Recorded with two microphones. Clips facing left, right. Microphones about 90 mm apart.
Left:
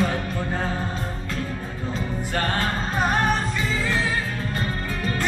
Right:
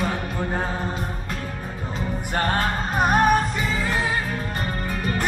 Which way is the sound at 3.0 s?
15° right (ahead or behind).